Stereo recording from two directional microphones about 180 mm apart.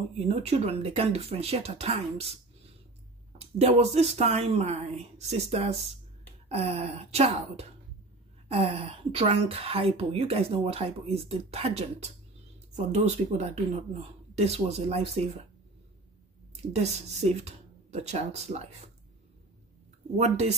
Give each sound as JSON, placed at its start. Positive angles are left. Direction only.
{"t": 0.1, "sound": "a woman's voice", "side_deg": -35}
{"t": 3.3, "sound": "a woman's voice", "side_deg": -35}
{"t": 16.6, "sound": "a woman's voice", "side_deg": -40}
{"t": 20.2, "sound": "a woman's voice", "side_deg": -40}